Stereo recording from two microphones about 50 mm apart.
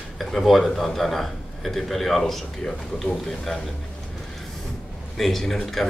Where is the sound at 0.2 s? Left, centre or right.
Centre.